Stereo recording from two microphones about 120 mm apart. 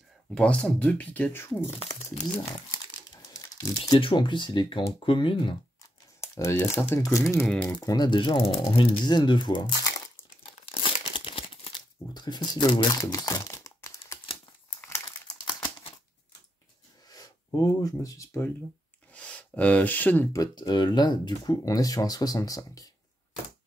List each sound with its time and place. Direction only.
0.3 s speech: 10° left (ahead or behind)
3.3 s a sound: 30° left (ahead or behind)
4.0 s speech: 45° left (ahead or behind)
6.2 s speech: 25° left (ahead or behind)
7.8 s speech: 35° left (ahead or behind)
10.6 s tearing: 50° left (ahead or behind); by 14.2 s 25° left (ahead or behind)
17.1 s speech: 30° left (ahead or behind)
19.1 s speech: 10° left (ahead or behind)
20.3 s speech: 35° left (ahead or behind)